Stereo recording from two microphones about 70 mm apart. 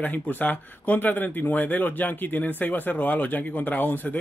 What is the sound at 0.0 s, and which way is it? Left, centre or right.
Speech, left.